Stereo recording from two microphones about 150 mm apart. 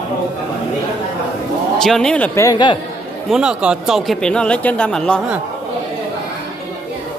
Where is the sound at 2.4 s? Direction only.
25° left (ahead or behind).